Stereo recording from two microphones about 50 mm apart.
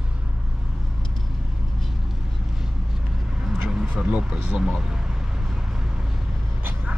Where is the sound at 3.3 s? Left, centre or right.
Centre.